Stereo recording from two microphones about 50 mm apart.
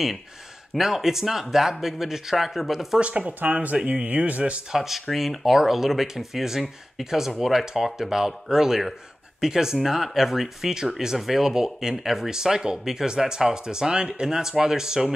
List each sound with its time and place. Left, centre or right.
0.7 s speech: centre
3.0 s speech: right
4.7 s speech: centre